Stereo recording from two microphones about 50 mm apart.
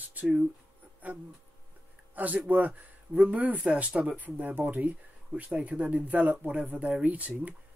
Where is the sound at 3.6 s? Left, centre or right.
Centre.